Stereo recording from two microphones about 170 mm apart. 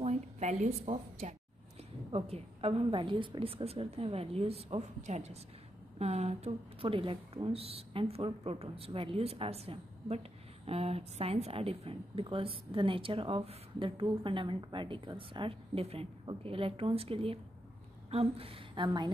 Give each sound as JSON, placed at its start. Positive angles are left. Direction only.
{"t": 0.0, "sound": "a woman's voice", "side_deg": -40}